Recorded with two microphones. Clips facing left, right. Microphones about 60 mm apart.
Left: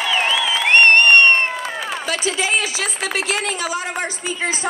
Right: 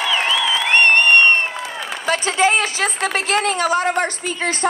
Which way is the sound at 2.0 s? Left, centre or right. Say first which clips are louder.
Right 7 dB; right.